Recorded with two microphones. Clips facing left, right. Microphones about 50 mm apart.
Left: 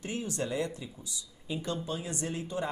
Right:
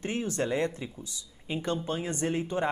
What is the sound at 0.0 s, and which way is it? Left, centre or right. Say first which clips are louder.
Speech: right 4 dB; right.